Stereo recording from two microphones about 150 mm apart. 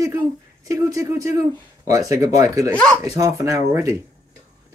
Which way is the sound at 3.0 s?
20° right (ahead or behind).